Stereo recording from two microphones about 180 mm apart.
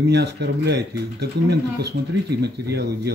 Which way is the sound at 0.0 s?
65° right (ahead or behind).